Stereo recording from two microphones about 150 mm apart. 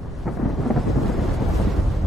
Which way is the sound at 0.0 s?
Centre (ahead or behind).